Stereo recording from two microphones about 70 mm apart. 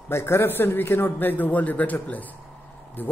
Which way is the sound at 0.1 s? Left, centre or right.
Left.